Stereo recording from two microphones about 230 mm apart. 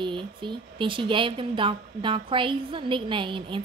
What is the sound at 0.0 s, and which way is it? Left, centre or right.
Speech, right.